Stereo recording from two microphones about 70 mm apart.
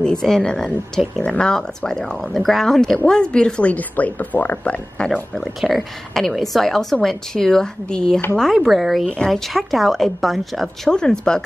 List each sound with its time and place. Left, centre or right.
0.0 s speech: centre
5.4 s a woman's voice: centre
9.1 s speech: centre
9.5 s a woman's voice: centre